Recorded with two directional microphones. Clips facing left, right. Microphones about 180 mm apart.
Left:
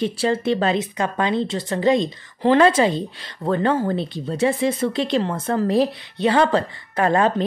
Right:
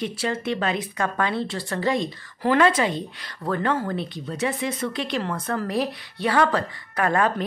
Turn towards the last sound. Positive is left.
turn(degrees=25)  # may be behind; listen again after turning